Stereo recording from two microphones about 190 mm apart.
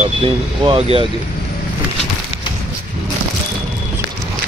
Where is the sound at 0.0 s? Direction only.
30° right (ahead or behind).